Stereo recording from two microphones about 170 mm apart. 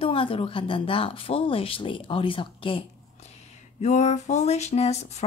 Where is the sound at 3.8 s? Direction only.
45° left (ahead or behind).